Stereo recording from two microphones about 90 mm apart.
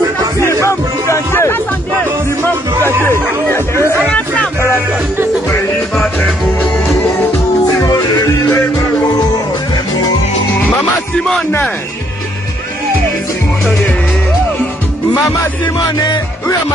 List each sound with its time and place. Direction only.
0.4 s music: 30° left (ahead or behind)
3.0 s chatter: 25° left (ahead or behind)
7.7 s music: 40° left (ahead or behind)
11.1 s music: 5° left (ahead or behind)
15.6 s music: 50° left (ahead or behind)